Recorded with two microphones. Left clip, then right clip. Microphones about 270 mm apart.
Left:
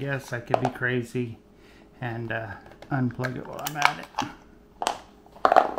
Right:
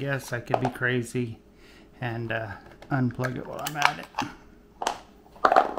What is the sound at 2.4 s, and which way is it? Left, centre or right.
Speech, right.